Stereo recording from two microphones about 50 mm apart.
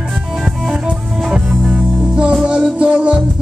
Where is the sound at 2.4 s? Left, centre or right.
Centre.